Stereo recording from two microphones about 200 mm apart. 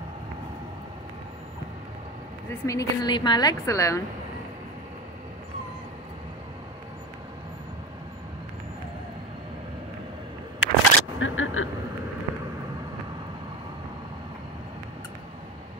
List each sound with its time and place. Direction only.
2.6 s a woman's voice: 15° left (ahead or behind)
10.6 s single-lens reflex camera: 75° left (ahead or behind)